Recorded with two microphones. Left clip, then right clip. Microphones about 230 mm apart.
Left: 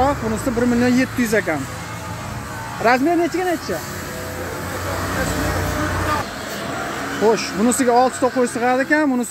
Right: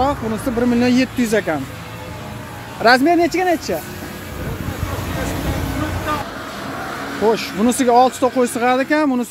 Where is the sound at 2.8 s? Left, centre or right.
Right.